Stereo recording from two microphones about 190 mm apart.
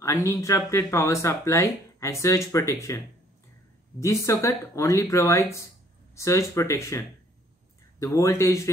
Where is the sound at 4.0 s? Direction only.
15° left (ahead or behind).